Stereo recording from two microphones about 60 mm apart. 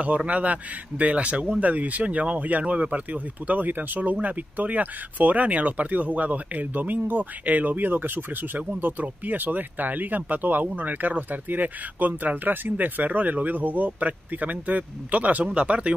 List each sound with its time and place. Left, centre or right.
0.0 s speech: right